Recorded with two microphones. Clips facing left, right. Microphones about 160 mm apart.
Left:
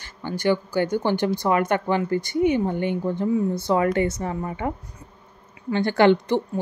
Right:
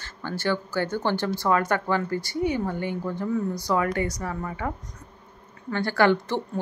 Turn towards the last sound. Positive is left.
turn(degrees=20)  # may be behind; listen again after turning